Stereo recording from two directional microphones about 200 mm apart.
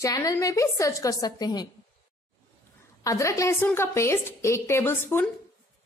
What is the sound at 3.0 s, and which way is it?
A woman's voice, 15° left (ahead or behind).